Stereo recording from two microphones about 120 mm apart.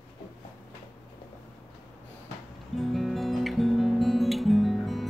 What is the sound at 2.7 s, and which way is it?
Music, centre (ahead or behind).